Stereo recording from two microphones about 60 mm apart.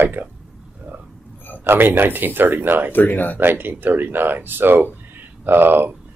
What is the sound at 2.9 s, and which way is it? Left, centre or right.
Speech, left.